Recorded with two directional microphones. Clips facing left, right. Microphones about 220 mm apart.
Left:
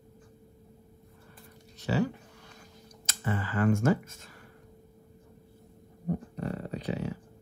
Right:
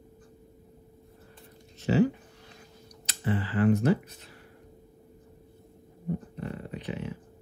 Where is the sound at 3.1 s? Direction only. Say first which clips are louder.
Right 3 dB; 45° left (ahead or behind).